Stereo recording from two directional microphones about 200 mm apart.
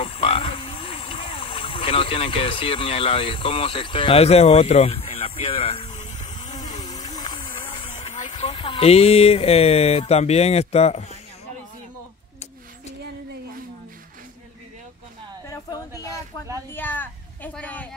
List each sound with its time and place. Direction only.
0.0 s frog: 30° left (ahead or behind)
6.5 s boat: 20° left (ahead or behind)
8.3 s speech: 25° left (ahead or behind)
16.7 s a sound: 10° left (ahead or behind)